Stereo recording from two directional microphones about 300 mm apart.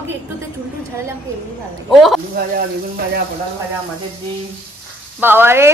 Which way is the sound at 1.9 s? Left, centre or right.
Centre.